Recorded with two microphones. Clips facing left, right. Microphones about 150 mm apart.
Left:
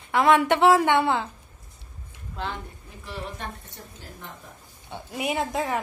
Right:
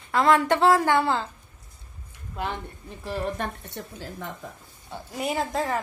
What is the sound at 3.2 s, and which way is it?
Speech, 55° right (ahead or behind).